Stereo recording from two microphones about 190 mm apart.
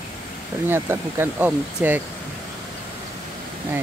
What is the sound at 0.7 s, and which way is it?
Speech, 10° right (ahead or behind).